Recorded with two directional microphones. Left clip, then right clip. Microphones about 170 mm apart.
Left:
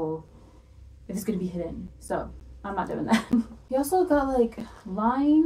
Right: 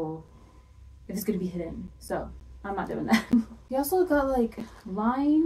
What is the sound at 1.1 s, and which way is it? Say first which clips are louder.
Speech: even; 5° right (ahead or behind).